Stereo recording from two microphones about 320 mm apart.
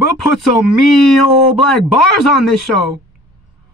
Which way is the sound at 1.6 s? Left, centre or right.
Left.